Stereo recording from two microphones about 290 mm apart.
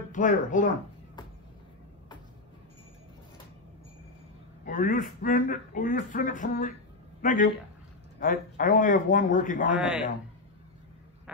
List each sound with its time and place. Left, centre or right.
0.1 s a man's voice: left
4.6 s a man's voice: left
9.8 s a man's voice: centre